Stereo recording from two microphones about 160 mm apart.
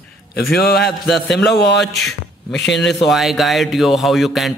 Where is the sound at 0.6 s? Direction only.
90° left.